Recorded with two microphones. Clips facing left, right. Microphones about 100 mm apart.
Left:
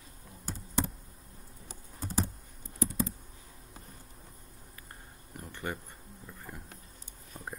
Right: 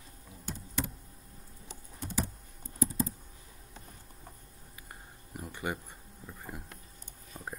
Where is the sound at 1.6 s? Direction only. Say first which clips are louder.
Left 1 dB; 40° left (ahead or behind).